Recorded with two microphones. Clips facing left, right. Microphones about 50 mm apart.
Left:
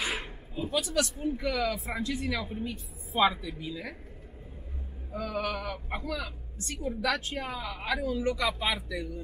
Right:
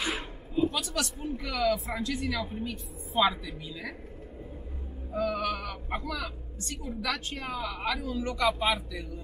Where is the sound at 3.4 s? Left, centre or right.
Centre.